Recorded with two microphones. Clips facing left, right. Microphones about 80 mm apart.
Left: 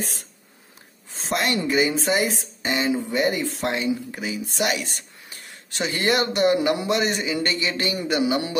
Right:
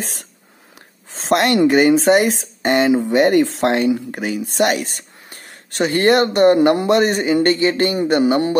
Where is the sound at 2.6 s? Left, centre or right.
Right.